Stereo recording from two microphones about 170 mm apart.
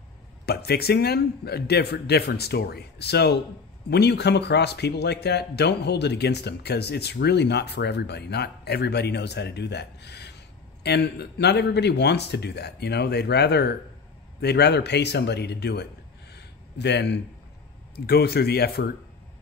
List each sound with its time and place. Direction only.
0.5 s speech: 70° left (ahead or behind)
16.3 s a sound: 90° left
17.9 s speech: 70° left (ahead or behind)